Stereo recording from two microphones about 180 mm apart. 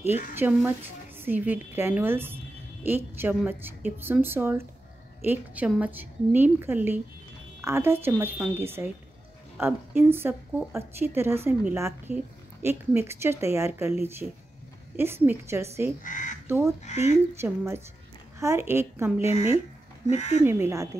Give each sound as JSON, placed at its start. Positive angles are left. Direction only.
{"t": 0.3, "sound": "a woman's voice", "side_deg": -10}
{"t": 15.0, "sound": "a woman's voice", "side_deg": -10}
{"t": 16.0, "sound": "speech", "side_deg": 45}
{"t": 16.4, "sound": "speech", "side_deg": -15}
{"t": 16.8, "sound": "speech", "side_deg": 40}
{"t": 17.4, "sound": "a woman's voice", "side_deg": -15}
{"t": 19.2, "sound": "speech", "side_deg": 35}
{"t": 20.4, "sound": "a woman's voice", "side_deg": -15}